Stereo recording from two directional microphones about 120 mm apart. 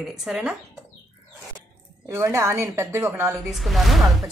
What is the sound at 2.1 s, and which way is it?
Speech, 25° right (ahead or behind).